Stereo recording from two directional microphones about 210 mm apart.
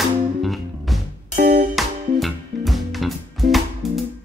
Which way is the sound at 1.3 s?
40° right (ahead or behind).